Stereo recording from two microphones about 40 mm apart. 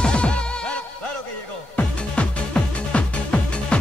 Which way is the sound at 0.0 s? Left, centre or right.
Left.